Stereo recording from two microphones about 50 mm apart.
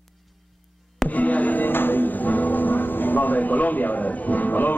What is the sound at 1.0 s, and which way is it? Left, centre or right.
Music, left.